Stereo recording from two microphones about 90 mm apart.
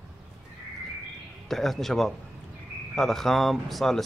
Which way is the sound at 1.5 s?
5° left (ahead or behind).